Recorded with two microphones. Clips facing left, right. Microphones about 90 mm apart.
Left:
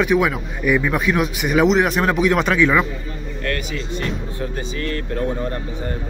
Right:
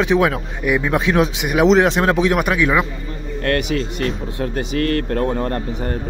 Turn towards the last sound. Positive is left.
turn(degrees=-55)  # may be behind; listen again after turning